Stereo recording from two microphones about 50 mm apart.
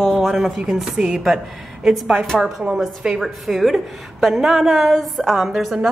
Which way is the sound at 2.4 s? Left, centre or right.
Centre.